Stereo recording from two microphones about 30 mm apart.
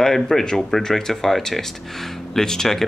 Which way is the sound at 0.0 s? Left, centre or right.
Centre.